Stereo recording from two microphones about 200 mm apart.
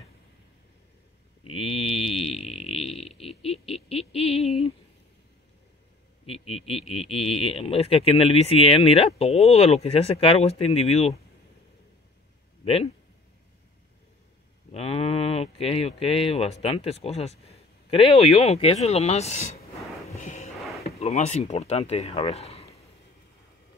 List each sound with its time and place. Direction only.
1.5 s mantra: 30° left (ahead or behind)
3.2 s a sound: 30° left (ahead or behind)
6.2 s speech: 30° left (ahead or behind)
12.6 s speech: 30° left (ahead or behind)
14.7 s speech: 30° left (ahead or behind)
20.1 s a sound: 35° left (ahead or behind)
21.0 s speech: 30° left (ahead or behind)